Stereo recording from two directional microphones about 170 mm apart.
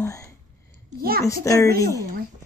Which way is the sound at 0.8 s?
60° right (ahead or behind).